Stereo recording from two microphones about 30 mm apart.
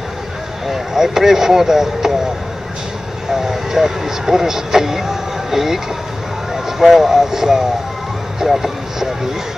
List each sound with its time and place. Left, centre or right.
0.7 s speech: centre
3.3 s speech: centre